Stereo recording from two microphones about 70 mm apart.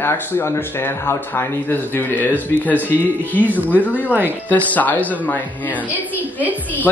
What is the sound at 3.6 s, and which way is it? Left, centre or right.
Speech, left.